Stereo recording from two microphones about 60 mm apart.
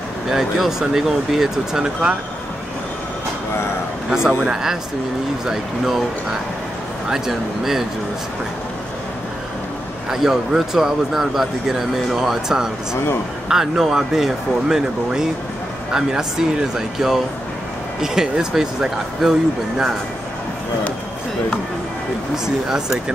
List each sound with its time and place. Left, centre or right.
0.3 s speech: centre
4.1 s speech: centre
7.1 s speech: centre
10.1 s speech: centre
12.9 s a man's voice: left
13.5 s speech: centre
22.3 s speech: centre